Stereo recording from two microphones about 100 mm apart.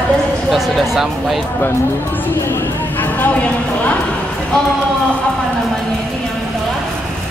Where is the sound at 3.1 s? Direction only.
15° left (ahead or behind).